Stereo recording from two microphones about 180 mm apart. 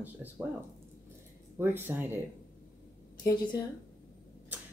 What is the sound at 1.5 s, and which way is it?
Speech, 15° right (ahead or behind).